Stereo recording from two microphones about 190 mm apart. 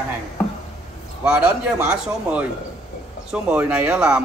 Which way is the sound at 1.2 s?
5° right (ahead or behind).